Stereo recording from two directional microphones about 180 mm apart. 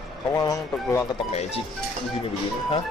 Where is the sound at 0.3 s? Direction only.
20° left (ahead or behind).